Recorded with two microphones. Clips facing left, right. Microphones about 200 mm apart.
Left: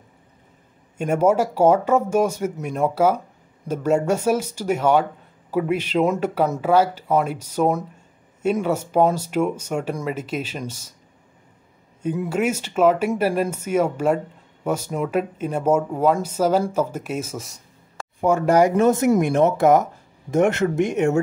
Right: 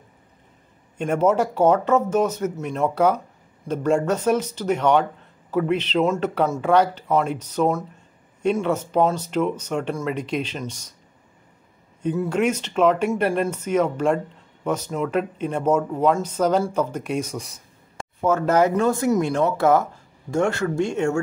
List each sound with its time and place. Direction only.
0.9 s speech: 10° left (ahead or behind)
12.0 s speech: 10° left (ahead or behind)